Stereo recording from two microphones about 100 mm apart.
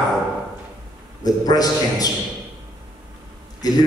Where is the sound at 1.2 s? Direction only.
40° left (ahead or behind).